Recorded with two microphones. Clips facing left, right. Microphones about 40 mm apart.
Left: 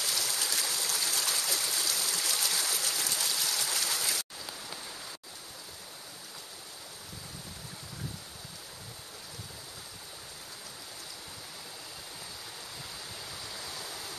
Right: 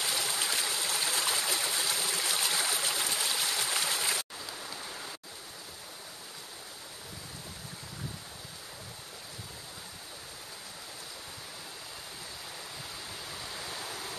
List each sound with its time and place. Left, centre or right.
0.0 s stream: right
13.4 s stream: centre